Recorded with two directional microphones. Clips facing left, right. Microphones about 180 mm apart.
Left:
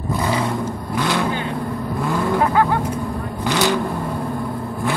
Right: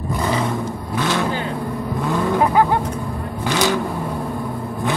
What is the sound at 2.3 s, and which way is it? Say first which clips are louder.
Vehicle: right 2 dB; 15° right (ahead or behind).